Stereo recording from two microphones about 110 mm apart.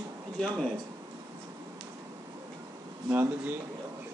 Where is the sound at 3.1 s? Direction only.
15° right (ahead or behind).